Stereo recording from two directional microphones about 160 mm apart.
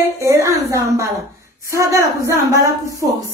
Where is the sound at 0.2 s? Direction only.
20° right (ahead or behind).